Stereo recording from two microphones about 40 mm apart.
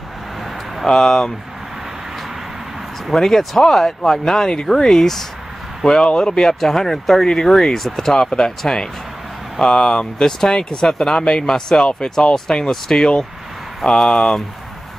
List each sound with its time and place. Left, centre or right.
0.8 s speech: centre
3.1 s speech: centre